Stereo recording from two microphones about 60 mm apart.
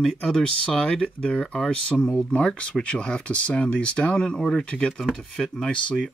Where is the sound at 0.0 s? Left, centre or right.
Centre.